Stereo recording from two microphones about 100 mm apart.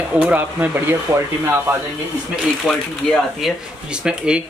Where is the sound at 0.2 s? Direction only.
15° right (ahead or behind).